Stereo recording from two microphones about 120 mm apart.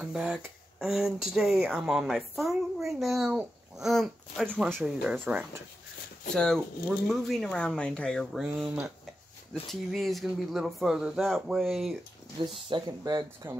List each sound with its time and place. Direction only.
0.0 s speech: 5° right (ahead or behind)
5.2 s speech: 15° right (ahead or behind)
6.3 s speech: 5° left (ahead or behind)
12.6 s speech: 40° right (ahead or behind)